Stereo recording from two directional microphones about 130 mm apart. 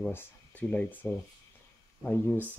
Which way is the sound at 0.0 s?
15° left (ahead or behind).